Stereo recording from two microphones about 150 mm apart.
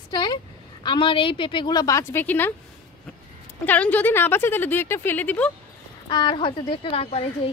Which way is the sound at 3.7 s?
10° left (ahead or behind).